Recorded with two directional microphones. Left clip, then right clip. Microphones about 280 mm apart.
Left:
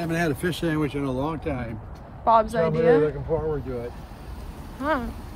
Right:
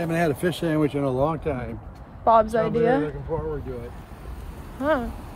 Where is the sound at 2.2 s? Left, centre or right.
Centre.